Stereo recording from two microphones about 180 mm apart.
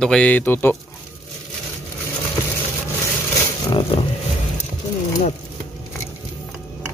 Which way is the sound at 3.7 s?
30° left (ahead or behind).